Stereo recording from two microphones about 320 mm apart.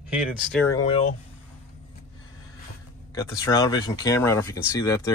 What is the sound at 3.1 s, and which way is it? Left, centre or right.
Speech, centre.